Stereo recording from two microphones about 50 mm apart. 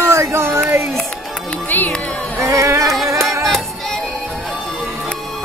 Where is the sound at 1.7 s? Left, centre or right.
Left.